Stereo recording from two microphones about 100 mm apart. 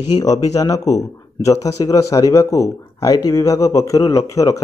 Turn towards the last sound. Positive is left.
turn(degrees=35)  # may be behind; listen again after turning